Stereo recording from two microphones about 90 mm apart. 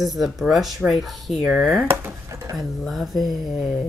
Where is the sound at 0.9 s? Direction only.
Centre (ahead or behind).